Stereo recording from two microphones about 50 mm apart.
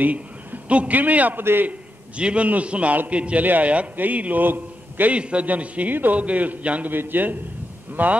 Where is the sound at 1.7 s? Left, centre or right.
Right.